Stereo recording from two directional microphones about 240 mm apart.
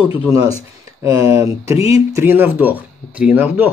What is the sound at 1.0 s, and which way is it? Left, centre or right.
Speech, centre.